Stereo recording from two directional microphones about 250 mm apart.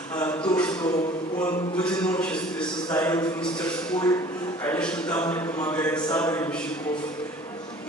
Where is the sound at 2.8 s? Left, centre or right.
Centre.